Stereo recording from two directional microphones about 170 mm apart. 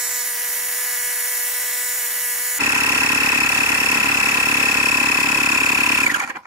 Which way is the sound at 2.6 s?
20° right (ahead or behind).